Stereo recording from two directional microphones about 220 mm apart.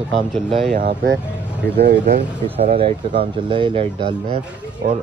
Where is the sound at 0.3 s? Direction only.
Centre (ahead or behind).